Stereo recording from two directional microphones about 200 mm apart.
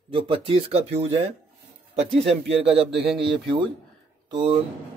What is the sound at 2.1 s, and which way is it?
Speech, centre (ahead or behind).